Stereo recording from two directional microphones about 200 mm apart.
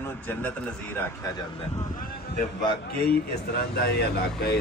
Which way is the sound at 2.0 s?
45° left (ahead or behind).